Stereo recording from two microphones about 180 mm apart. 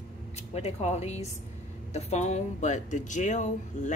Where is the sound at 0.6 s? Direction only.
35° left (ahead or behind).